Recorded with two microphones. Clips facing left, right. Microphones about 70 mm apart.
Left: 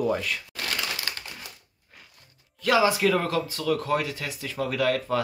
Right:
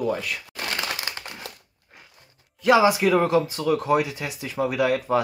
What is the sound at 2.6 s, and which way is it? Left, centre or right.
Speech, right.